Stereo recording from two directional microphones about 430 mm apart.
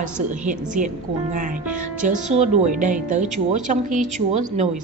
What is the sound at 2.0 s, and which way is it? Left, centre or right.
Speech, centre.